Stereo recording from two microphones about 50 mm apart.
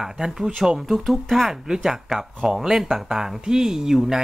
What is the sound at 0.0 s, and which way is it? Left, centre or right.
Speech, centre.